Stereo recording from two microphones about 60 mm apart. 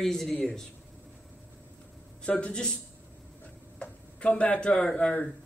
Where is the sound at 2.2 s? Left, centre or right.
Centre.